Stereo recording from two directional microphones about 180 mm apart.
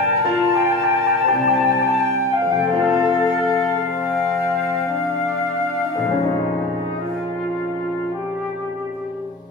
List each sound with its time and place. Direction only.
0.3 s music: centre (ahead or behind)
4.1 s music: centre (ahead or behind)
5.9 s music: 15° left (ahead or behind)